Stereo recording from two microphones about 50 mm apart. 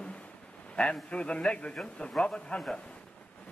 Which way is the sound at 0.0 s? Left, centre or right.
Left.